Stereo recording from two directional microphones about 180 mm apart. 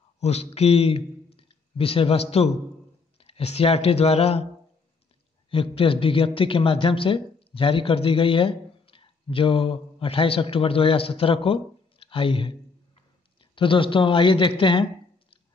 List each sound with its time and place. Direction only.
0.2 s a man's voice: 35° left (ahead or behind)
5.5 s a man's voice: 30° left (ahead or behind)